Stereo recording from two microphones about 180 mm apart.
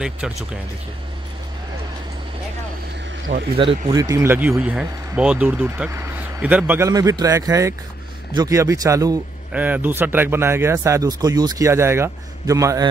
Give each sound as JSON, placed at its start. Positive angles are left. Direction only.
{"t": 0.2, "sound": "speech", "side_deg": -5}
{"t": 3.5, "sound": "speech", "side_deg": -30}
{"t": 3.9, "sound": "speech", "side_deg": -20}
{"t": 6.9, "sound": "a man's voice", "side_deg": -20}
{"t": 9.5, "sound": "speech", "side_deg": -10}